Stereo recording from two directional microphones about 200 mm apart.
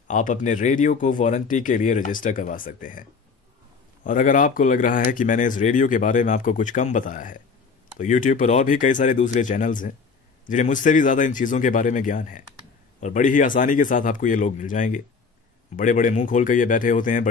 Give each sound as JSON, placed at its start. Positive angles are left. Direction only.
{"t": 0.1, "sound": "speech", "side_deg": 40}